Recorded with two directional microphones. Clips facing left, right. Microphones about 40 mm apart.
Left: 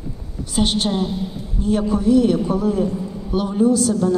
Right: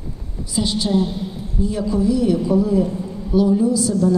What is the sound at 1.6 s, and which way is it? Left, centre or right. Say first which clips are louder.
A man's voice: left 1 dB; left.